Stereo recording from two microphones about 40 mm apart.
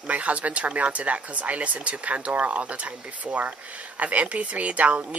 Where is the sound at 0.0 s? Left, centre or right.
Right.